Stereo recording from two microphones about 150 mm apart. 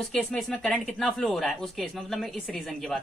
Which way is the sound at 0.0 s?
5° left (ahead or behind).